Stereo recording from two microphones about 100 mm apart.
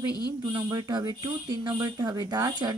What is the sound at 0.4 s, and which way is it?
Speech, 50° right (ahead or behind).